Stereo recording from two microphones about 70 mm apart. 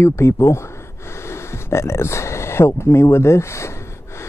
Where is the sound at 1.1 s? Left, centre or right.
Left.